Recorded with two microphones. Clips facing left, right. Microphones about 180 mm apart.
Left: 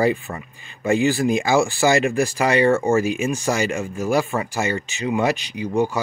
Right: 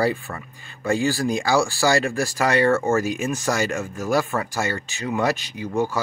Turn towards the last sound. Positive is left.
turn(degrees=15)  # may be behind; listen again after turning